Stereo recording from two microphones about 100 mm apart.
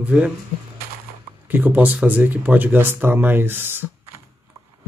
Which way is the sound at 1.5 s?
20° right (ahead or behind).